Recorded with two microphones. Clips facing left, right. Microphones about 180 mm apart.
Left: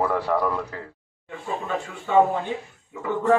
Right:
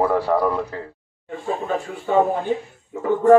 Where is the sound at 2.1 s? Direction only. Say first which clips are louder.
Right 1 dB; 40° right (ahead or behind).